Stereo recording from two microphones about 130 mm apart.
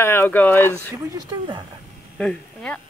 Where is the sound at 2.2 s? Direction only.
5° left (ahead or behind).